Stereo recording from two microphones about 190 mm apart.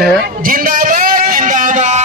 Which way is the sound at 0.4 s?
45° right (ahead or behind).